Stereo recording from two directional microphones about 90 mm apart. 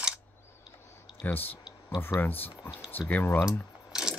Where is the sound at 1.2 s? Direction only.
20° left (ahead or behind).